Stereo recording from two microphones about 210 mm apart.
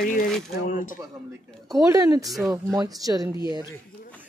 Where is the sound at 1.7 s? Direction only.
15° right (ahead or behind).